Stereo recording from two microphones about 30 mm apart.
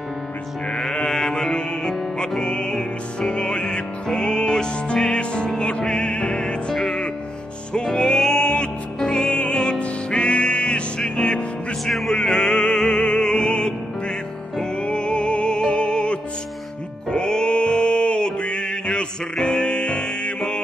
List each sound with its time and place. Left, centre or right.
0.7 s music: left
2.4 s music: left
6.5 s music: left
11.8 s music: centre
12.1 s music: left
17.1 s mantra: left
19.4 s music: left